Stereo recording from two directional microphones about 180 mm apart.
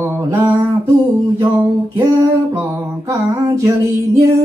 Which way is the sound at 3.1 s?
15° right (ahead or behind).